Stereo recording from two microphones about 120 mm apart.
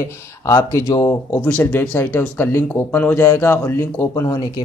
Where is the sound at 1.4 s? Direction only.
10° left (ahead or behind).